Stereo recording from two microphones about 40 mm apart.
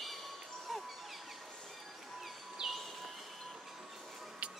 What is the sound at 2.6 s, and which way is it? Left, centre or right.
Train, centre.